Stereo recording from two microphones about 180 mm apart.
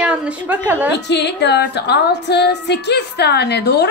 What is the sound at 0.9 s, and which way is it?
Female singing, 70° left (ahead or behind).